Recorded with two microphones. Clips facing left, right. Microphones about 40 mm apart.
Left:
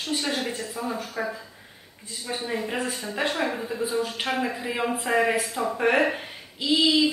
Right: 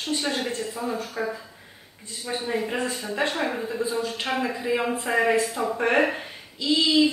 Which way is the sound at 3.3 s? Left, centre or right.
Centre.